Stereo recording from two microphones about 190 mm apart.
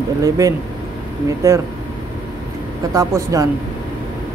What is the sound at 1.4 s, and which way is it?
Speech, 15° right (ahead or behind).